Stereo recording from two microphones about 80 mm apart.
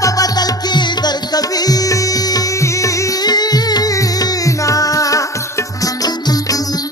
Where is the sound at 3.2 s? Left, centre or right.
Left.